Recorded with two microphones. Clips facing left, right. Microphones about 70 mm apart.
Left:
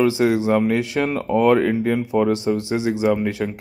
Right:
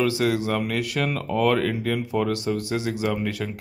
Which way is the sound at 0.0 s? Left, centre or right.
Left.